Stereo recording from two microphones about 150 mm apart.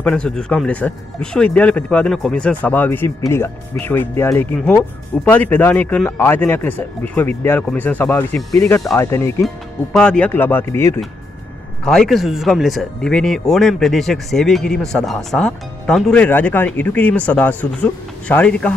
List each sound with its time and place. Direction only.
0.0 s speech: 5° left (ahead or behind)
9.9 s speech: 5° left (ahead or behind)
11.8 s speech: 5° left (ahead or behind)